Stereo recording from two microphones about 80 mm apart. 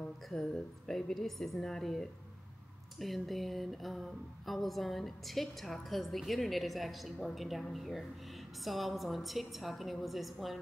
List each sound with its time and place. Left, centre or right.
0.3 s speech: centre